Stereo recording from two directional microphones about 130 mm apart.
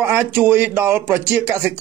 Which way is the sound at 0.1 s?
15° right (ahead or behind).